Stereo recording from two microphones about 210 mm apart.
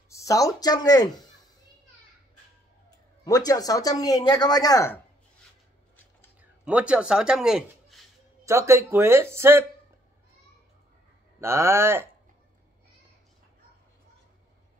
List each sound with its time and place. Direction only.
0.1 s speech: 15° left (ahead or behind)
3.3 s speech: 15° left (ahead or behind)
6.4 s speech: 5° right (ahead or behind)
8.5 s speech: 15° right (ahead or behind)
11.4 s speech: 10° right (ahead or behind)